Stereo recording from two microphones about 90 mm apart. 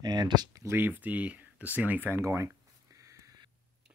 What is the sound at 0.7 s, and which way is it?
Speech, 25° right (ahead or behind).